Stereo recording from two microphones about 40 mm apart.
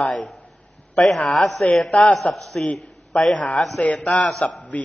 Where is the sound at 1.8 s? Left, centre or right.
Left.